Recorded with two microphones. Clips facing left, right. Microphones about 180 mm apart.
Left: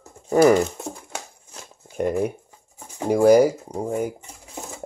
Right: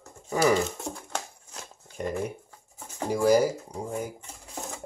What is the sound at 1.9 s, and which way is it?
Speech, 60° left (ahead or behind).